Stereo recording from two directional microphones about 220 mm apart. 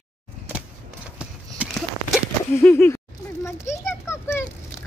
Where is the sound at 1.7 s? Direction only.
Centre (ahead or behind).